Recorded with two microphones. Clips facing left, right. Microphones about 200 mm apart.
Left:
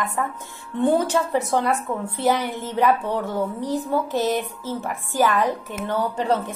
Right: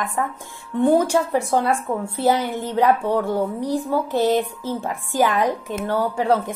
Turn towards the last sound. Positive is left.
turn(degrees=-10)  # may be behind; listen again after turning